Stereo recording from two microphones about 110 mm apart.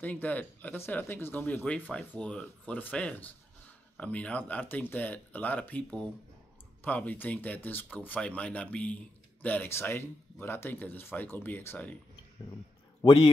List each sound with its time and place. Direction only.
0.0 s speech: 15° left (ahead or behind)
13.0 s a man's voice: 45° left (ahead or behind)